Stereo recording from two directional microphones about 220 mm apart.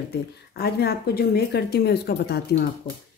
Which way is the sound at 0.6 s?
45° left (ahead or behind).